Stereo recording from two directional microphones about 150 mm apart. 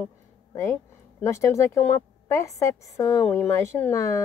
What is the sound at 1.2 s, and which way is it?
Speech, 20° left (ahead or behind).